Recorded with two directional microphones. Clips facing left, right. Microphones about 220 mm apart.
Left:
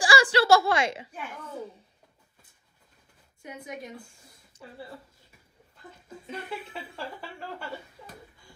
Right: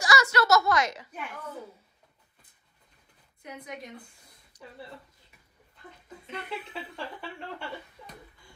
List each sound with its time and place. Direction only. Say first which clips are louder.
0.0 s a woman's voice: left 3 dB; 30° left (ahead or behind)
4.6 s a sound: left 1 dB; 25° left (ahead or behind)
6.5 s speech: even; 5° left (ahead or behind)